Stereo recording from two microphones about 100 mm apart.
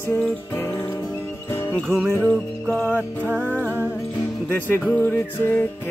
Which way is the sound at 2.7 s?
15° left (ahead or behind).